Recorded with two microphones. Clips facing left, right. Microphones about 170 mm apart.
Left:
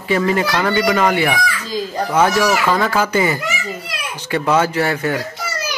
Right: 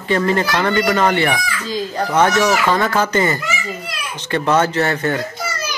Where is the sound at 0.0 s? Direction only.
5° left (ahead or behind).